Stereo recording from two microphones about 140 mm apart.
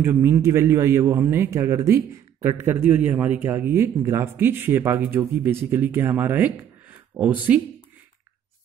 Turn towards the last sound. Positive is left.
turn(degrees=-10)  # may be behind; listen again after turning